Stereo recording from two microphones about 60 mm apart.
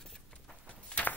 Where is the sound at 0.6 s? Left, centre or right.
Left.